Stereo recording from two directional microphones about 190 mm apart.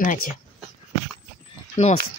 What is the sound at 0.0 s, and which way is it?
Speech, 40° left (ahead or behind).